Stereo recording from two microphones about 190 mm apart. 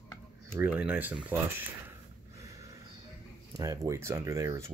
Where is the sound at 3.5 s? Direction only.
15° right (ahead or behind).